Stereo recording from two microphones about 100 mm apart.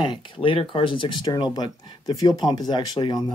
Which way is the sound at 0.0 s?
55° left (ahead or behind).